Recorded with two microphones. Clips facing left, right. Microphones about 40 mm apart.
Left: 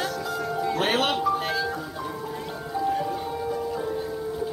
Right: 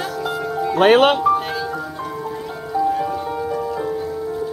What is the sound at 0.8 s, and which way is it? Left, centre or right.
Speech, right.